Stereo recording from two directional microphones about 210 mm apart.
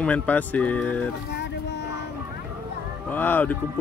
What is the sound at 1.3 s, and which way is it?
Vehicle, 55° left (ahead or behind).